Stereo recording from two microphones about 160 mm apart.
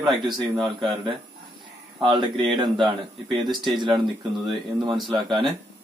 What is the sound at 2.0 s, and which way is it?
Speech, 30° right (ahead or behind).